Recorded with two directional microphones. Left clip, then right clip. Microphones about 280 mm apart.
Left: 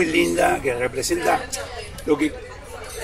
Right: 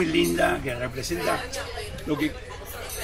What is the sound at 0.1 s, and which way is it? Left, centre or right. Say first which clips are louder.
Music: left 4 dB; left.